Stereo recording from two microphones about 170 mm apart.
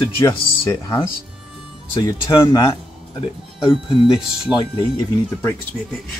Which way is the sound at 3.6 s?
30° left (ahead or behind).